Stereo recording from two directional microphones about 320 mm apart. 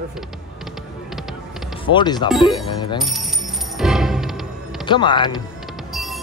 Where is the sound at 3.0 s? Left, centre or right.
Centre.